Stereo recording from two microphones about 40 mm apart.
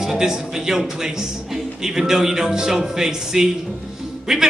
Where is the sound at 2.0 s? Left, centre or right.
Centre.